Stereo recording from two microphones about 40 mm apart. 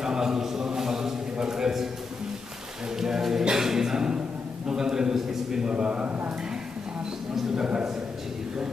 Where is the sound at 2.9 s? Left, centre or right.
Centre.